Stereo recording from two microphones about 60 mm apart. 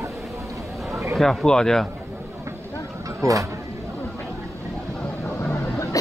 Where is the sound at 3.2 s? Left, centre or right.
Right.